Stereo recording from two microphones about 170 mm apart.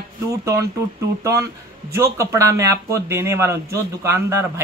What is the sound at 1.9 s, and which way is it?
Speech, 15° right (ahead or behind).